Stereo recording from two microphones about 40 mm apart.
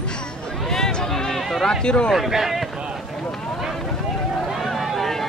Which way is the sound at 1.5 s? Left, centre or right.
Centre.